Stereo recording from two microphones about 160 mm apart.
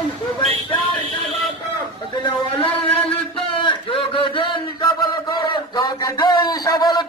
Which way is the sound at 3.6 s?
30° left (ahead or behind).